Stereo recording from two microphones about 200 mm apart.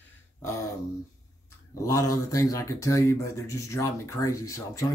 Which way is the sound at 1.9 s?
15° left (ahead or behind).